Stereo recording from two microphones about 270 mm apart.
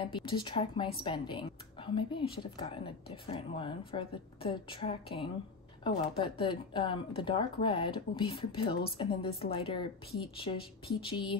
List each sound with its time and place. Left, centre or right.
0.0 s a woman's voice: centre
11.0 s speech: centre